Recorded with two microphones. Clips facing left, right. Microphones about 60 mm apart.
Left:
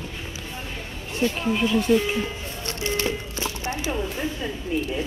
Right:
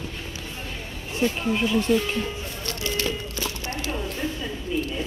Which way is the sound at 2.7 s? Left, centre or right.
Left.